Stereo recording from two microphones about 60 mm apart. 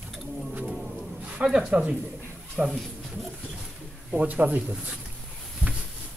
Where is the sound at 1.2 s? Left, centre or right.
Centre.